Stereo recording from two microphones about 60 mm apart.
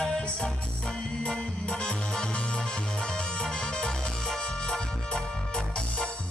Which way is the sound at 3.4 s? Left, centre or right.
Centre.